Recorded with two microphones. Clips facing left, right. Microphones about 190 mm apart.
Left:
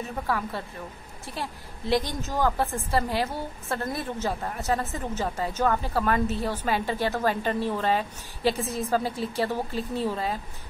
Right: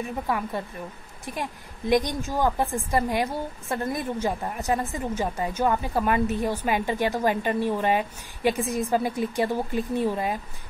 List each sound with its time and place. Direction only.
0.3 s a woman's voice: 15° right (ahead or behind)